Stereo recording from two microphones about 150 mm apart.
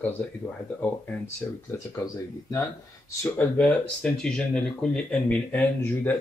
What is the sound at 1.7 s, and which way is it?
Speech, 20° left (ahead or behind).